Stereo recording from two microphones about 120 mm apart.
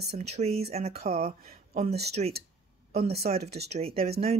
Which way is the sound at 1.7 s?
75° right (ahead or behind).